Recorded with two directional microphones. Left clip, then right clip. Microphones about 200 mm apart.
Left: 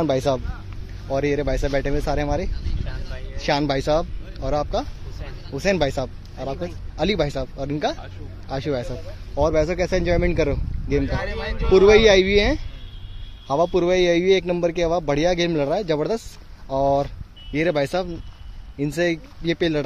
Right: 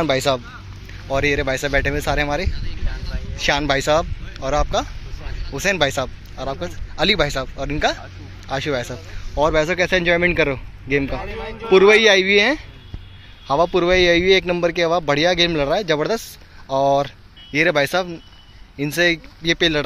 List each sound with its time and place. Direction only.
0.0 s speech: 15° left (ahead or behind)
13.7 s speech: centre (ahead or behind)